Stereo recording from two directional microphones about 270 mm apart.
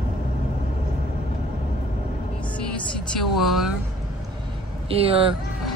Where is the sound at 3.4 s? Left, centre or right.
Centre.